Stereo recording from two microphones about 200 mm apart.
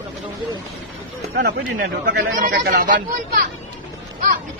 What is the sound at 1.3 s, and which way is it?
Speech, 55° right (ahead or behind).